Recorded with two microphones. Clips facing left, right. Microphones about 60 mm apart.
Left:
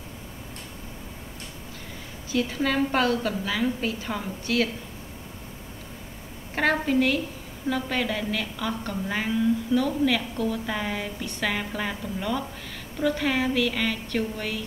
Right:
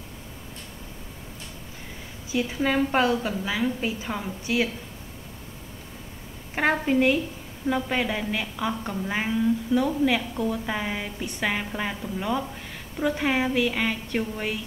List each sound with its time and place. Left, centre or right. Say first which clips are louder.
2.3 s a woman's voice: right 1 dB; centre
6.5 s a woman's voice: even; centre